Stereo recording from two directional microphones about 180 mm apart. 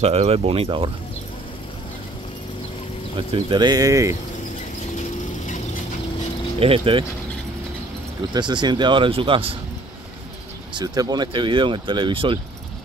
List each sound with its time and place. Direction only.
0.0 s speech: 35° right (ahead or behind)
3.2 s speech: 25° right (ahead or behind)
6.6 s speech: 30° right (ahead or behind)
8.3 s speech: 25° right (ahead or behind)
10.8 s speech: 25° right (ahead or behind)